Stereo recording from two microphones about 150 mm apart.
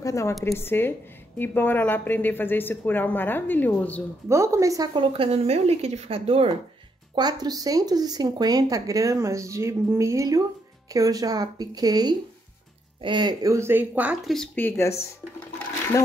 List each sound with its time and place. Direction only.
0.0 s speech: 20° left (ahead or behind)
4.3 s speech: 20° right (ahead or behind)
4.9 s speech: 35° right (ahead or behind)
7.2 s speech: 25° right (ahead or behind); by 14.3 s 10° right (ahead or behind)
14.3 s speech: 5° left (ahead or behind)